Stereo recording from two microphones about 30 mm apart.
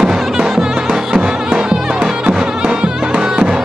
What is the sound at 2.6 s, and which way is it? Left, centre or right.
Music, right.